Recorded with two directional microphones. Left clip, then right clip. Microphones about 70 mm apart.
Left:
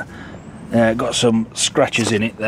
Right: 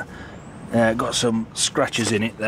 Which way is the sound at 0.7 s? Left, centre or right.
Centre.